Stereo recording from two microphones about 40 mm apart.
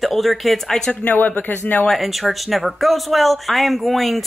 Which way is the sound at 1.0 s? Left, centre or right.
Left.